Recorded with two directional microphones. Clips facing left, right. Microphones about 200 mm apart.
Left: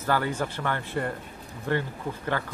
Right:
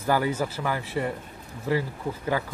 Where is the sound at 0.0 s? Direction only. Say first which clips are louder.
Right 2 dB; 10° right (ahead or behind).